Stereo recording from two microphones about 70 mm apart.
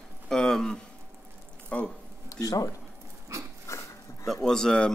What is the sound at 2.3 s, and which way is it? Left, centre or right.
Speech, left.